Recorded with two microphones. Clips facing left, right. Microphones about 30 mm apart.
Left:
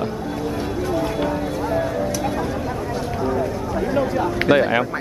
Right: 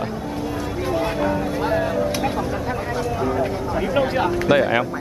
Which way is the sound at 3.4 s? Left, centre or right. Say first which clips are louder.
Right 1 dB; right.